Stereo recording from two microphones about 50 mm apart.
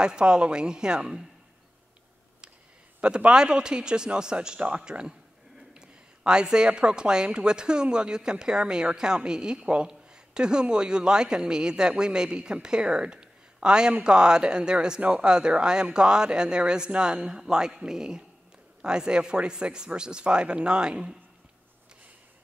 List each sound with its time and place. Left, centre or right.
0.0 s a woman's voice: centre
3.0 s a woman's voice: centre